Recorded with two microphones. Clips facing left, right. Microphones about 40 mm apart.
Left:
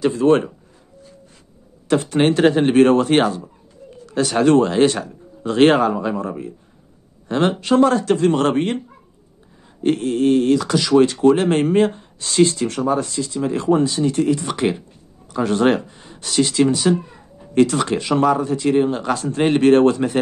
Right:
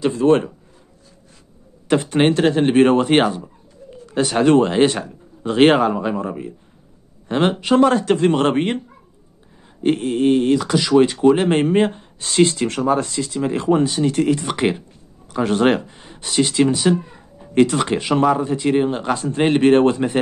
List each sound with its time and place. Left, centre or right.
0.0 s a man's voice: centre
2.0 s speech: right
2.3 s a man's voice: centre
2.7 s speech: centre; by 8.3 s right
8.3 s speech: right
9.8 s speech: centre
12.2 s speech: right; by 17.0 s centre
17.6 s speech: right
18.3 s speech: right